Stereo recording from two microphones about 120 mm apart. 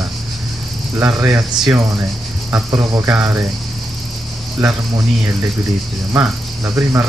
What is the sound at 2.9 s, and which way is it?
Speech, 20° right (ahead or behind).